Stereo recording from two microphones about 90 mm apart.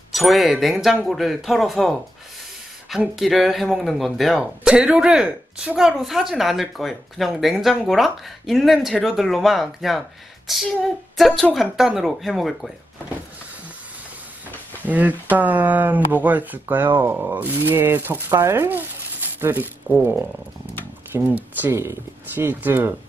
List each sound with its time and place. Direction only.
0.1 s a man's voice: centre (ahead or behind)
3.2 s a man's voice: centre (ahead or behind)
14.9 s speech: 20° right (ahead or behind)